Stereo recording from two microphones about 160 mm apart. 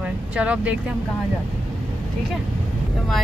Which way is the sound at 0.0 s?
5° right (ahead or behind).